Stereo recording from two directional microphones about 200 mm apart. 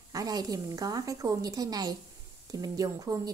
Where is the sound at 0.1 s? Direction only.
20° right (ahead or behind).